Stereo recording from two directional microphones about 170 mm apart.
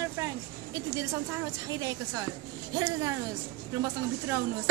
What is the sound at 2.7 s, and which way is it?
Speech, 20° right (ahead or behind).